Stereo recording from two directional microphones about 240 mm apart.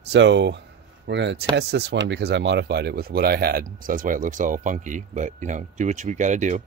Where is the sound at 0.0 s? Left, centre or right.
Right.